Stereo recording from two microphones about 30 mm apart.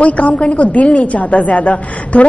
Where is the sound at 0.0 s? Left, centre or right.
Left.